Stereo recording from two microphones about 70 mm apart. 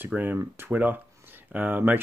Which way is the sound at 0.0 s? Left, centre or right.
Right.